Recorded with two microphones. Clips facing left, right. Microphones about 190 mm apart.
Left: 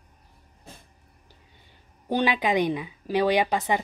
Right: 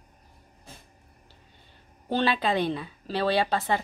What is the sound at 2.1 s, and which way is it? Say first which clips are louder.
A woman's voice: left 2 dB; 15° left (ahead or behind).